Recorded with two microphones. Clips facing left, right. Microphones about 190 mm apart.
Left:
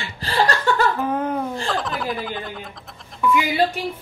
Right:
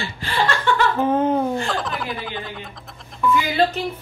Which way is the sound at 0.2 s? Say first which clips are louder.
Left 2 dB; 40° left (ahead or behind).